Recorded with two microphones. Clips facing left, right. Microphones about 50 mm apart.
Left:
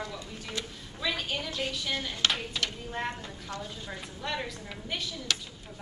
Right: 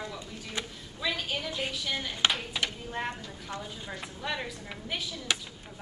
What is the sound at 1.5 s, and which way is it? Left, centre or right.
A woman's voice, centre.